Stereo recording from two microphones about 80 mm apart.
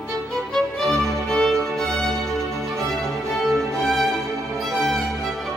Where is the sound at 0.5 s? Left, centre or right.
Centre.